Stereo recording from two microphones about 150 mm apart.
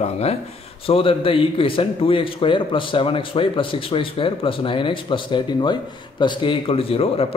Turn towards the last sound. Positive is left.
turn(degrees=40)  # may be behind; listen again after turning